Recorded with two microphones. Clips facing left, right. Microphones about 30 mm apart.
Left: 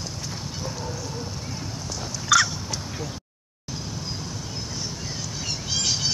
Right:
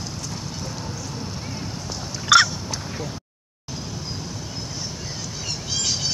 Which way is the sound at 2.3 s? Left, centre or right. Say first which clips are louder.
Right 4 dB; right.